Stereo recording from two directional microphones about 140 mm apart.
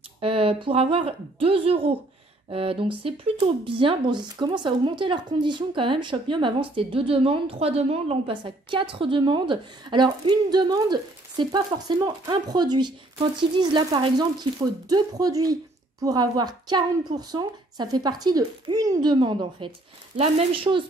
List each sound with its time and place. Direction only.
0.2 s speech: 40° right (ahead or behind)